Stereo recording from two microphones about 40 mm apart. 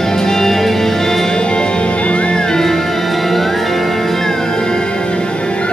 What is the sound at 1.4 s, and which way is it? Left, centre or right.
Music, left.